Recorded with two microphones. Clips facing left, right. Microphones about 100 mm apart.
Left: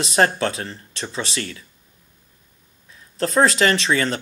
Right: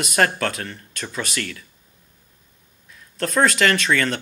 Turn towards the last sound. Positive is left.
turn(degrees=25)  # may be behind; listen again after turning